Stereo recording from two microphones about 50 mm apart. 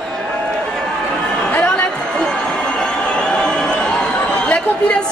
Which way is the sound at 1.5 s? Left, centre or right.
Left.